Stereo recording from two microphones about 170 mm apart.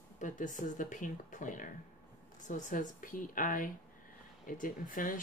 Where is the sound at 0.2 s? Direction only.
50° left (ahead or behind).